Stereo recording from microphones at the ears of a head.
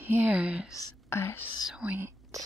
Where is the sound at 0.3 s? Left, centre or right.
Centre.